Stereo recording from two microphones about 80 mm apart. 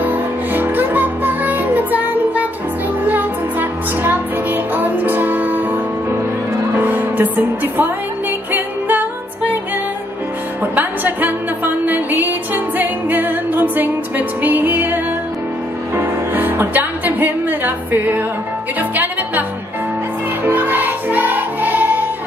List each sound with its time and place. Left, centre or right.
0.0 s music: right
6.8 s speech: right
8.5 s music: right
10.6 s music: right
16.0 s music: right
20.4 s music: right